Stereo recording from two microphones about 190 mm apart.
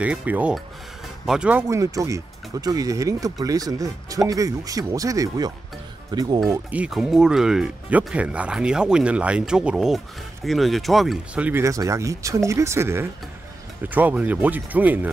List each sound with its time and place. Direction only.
0.0 s speech: 10° right (ahead or behind)
6.5 s speech: 5° right (ahead or behind)